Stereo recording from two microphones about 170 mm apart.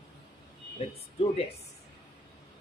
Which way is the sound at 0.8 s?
35° left (ahead or behind).